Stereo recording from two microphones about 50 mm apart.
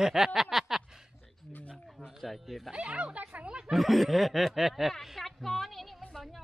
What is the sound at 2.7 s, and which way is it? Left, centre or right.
Speech, right.